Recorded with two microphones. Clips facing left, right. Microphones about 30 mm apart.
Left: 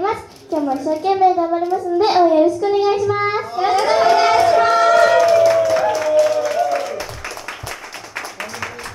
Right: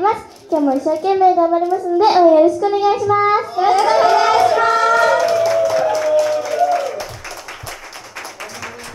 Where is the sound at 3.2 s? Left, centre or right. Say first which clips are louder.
Right 4 dB; centre.